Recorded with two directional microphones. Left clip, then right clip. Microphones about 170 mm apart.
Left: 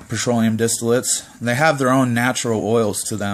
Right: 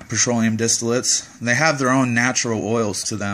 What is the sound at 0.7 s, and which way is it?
Speech, 20° left (ahead or behind).